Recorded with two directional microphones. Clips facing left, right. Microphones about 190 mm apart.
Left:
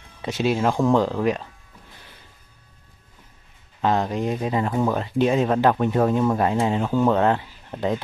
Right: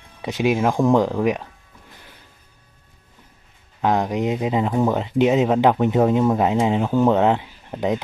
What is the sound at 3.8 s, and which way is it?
Speech, 15° right (ahead or behind).